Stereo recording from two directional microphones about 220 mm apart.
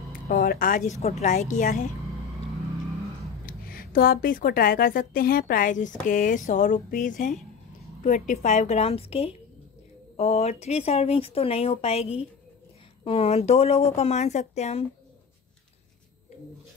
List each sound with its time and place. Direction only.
0.1 s a woman's voice: 45° left (ahead or behind)
3.4 s a woman's voice: 40° left (ahead or behind)